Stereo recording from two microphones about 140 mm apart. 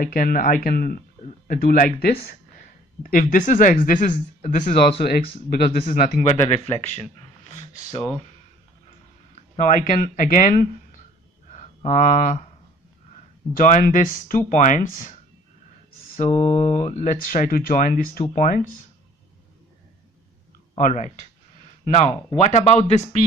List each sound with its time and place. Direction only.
0.0 s speech: 90° left
1.2 s speech: 80° left
5.5 s speech: 90° left
7.4 s speech: 50° left (ahead or behind)
9.3 s speech: 65° left (ahead or behind)
11.8 s speech: 60° left (ahead or behind)
13.5 s speech: 70° left (ahead or behind)
16.2 s speech: 50° left (ahead or behind); by 18.2 s 75° left (ahead or behind)
18.2 s speech: 65° left (ahead or behind)
20.7 s speech: 60° left (ahead or behind)